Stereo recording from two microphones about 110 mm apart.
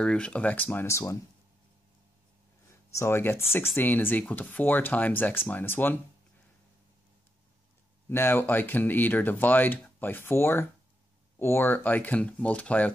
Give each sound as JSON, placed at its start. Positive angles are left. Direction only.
{"t": 0.0, "sound": "speech", "side_deg": 10}
{"t": 2.9, "sound": "speech", "side_deg": 25}
{"t": 8.1, "sound": "speech", "side_deg": 20}